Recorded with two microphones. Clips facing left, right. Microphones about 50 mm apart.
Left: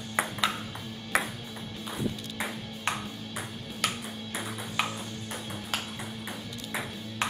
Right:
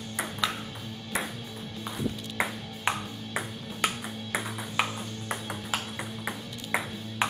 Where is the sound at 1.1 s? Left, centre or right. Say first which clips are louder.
Left 4 dB; left.